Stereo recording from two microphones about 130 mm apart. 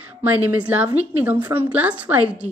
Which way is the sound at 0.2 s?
10° right (ahead or behind).